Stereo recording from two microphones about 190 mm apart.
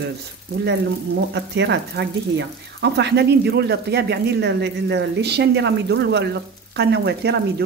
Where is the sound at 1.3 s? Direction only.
65° right (ahead or behind).